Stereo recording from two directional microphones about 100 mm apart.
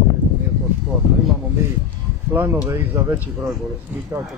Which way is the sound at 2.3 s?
20° right (ahead or behind).